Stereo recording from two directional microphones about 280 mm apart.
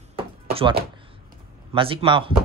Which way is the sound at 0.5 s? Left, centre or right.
Centre.